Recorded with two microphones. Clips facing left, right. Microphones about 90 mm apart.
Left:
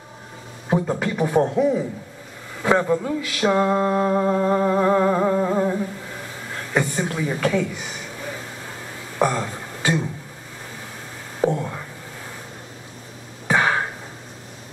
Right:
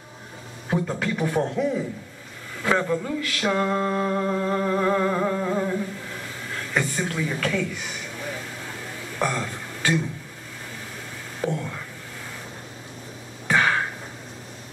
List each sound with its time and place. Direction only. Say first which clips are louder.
0.7 s mantra: left 4 dB; 15° left (ahead or behind)
6.5 s chuckle: left 3 dB; 15° left (ahead or behind)
9.2 s speech: left 5 dB; 15° left (ahead or behind)
11.4 s whispering: left 6 dB; 20° left (ahead or behind)
13.5 s a sound: left 2 dB; 15° left (ahead or behind)